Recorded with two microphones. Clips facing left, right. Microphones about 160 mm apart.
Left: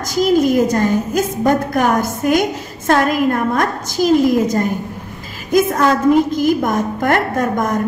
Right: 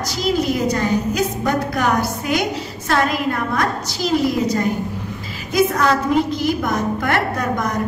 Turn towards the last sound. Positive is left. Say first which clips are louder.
# left 4 dB
turn(degrees=45)  # may be behind; listen again after turning